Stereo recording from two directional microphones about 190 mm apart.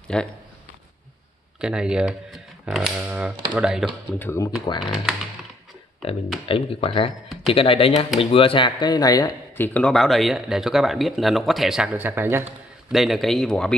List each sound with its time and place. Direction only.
0.1 s speech: 5° left (ahead or behind)
1.6 s speech: 5° right (ahead or behind)
4.2 s speech: 15° left (ahead or behind)
4.8 s speech: centre (ahead or behind)
6.4 s speech: 30° left (ahead or behind); by 12.4 s 10° right (ahead or behind)
12.9 s speech: centre (ahead or behind)